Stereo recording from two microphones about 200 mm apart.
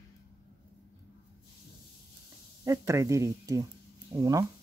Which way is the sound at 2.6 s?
15° right (ahead or behind).